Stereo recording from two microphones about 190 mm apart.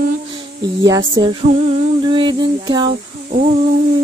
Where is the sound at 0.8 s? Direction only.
20° right (ahead or behind).